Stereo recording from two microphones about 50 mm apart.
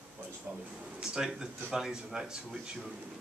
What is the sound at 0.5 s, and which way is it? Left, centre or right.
Speech, right.